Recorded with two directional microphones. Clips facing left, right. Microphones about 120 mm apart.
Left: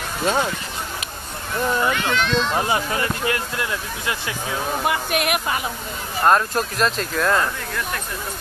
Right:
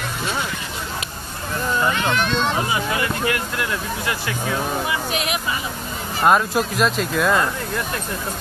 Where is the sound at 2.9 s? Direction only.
30° left (ahead or behind).